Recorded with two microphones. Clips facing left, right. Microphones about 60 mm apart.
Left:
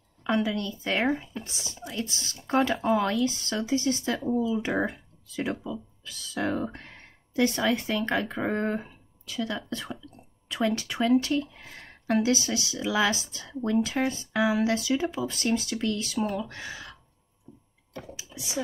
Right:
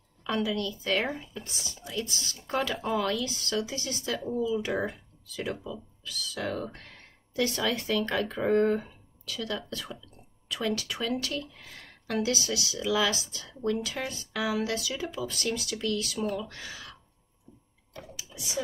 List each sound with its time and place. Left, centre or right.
0.2 s speech: left
18.1 s computer keyboard: left